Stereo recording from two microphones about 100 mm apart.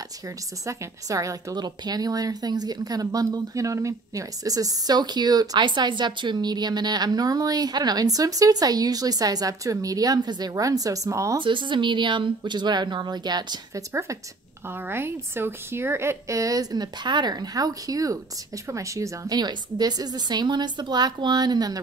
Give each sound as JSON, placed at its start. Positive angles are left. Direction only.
{"t": 0.7, "sound": "a woman's voice", "side_deg": -35}
{"t": 11.3, "sound": "a woman's voice", "side_deg": -55}
{"t": 14.7, "sound": "a woman's voice", "side_deg": -25}